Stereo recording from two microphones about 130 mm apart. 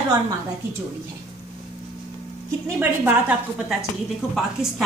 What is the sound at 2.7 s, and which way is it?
Speech, 15° right (ahead or behind).